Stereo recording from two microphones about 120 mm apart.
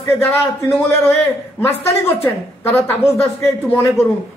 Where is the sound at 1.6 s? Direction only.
20° left (ahead or behind).